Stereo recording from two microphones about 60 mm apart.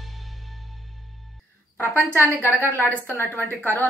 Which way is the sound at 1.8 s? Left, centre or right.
Left.